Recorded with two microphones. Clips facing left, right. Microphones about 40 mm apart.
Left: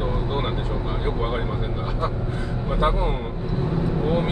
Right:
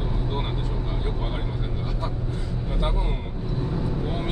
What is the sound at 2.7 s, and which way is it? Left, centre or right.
Speech, left.